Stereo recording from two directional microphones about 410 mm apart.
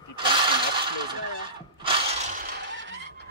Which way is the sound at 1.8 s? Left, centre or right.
Centre.